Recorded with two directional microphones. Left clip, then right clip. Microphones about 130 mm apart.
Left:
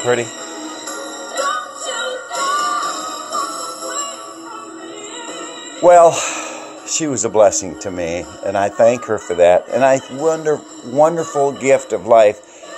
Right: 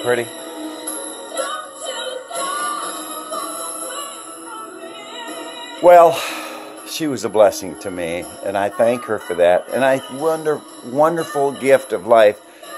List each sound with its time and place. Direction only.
0.0 s speech: 5° right (ahead or behind)
1.3 s music: 30° left (ahead or behind)
5.8 s speech: 10° right (ahead or behind)